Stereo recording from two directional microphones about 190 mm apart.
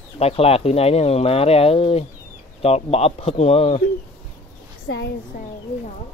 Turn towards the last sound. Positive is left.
turn(degrees=40)  # may be behind; listen again after turning